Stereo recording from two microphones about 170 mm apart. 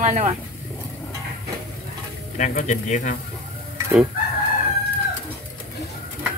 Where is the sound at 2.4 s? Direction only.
45° left (ahead or behind).